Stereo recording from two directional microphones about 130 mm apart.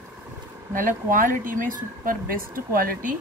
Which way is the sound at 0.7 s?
90° right.